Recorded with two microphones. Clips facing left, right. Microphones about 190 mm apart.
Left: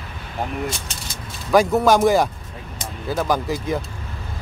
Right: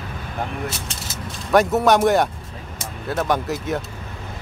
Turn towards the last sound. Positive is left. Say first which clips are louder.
# left 1 dB
turn(degrees=0)  # may be behind; listen again after turning